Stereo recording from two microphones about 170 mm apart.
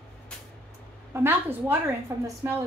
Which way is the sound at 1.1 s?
15° right (ahead or behind).